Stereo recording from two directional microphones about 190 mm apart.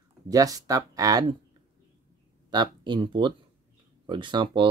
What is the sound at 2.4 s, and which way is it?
Speech, 25° right (ahead or behind).